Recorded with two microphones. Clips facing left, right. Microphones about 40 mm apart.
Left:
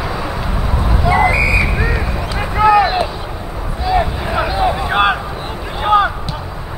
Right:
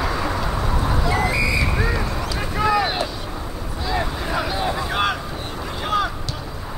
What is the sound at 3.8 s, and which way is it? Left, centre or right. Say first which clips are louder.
Boat: left 8 dB; centre.